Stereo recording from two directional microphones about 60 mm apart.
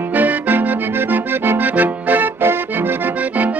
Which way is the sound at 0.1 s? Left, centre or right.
Right.